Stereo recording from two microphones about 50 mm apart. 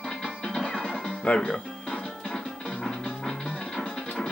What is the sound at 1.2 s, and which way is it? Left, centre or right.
Music, left.